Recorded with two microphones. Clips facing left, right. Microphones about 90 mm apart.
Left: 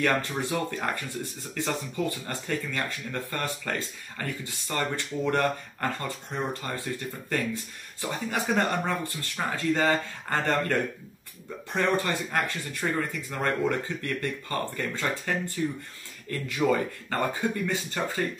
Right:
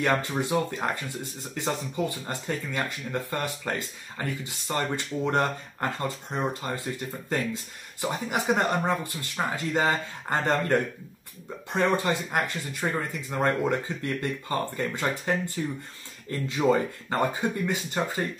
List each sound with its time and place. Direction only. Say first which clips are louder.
0.0 s speech: right 1 dB; 20° right (ahead or behind)